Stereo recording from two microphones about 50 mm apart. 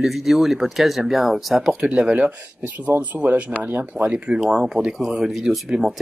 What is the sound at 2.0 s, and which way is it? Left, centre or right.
Speech, right.